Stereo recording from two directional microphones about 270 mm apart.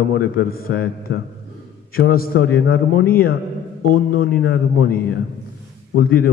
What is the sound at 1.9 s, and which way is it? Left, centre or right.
Music, left.